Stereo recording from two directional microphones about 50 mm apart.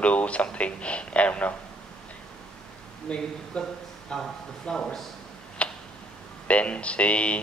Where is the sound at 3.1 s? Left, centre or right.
Left.